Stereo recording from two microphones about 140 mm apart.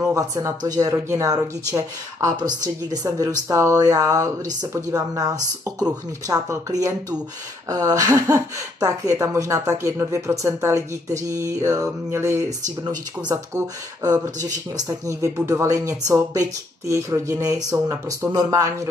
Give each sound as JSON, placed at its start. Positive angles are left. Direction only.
{"t": 0.0, "sound": "speech", "side_deg": -25}
{"t": 14.0, "sound": "speech", "side_deg": -25}